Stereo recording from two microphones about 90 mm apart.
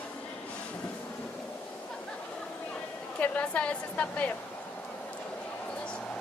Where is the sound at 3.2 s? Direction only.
15° left (ahead or behind).